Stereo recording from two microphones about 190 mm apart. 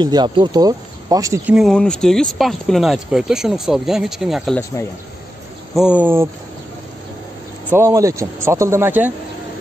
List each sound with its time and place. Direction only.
0.0 s speech: 20° right (ahead or behind)
1.5 s speech: centre (ahead or behind)
5.8 s speech: 5° right (ahead or behind)
7.7 s speech: 15° right (ahead or behind)